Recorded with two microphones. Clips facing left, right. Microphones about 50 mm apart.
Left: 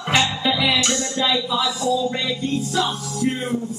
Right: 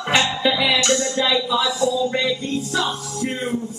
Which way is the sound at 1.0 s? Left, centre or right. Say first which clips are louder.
Right 1 dB; centre.